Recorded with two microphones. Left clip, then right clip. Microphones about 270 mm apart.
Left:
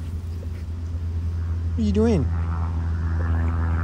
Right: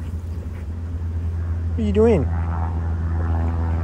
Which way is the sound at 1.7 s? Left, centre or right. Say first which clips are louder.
Right 5 dB; left.